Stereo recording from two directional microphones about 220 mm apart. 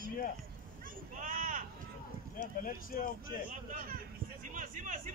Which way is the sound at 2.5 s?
40° left (ahead or behind).